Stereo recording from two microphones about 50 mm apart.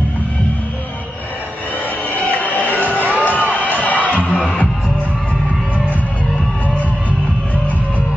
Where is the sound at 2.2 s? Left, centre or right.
Left.